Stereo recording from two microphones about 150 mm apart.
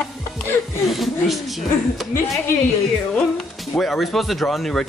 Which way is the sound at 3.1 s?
5° left (ahead or behind).